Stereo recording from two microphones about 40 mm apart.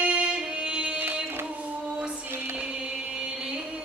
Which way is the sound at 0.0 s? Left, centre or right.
Right.